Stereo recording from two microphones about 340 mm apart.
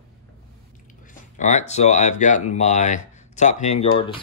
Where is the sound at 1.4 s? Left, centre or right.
Centre.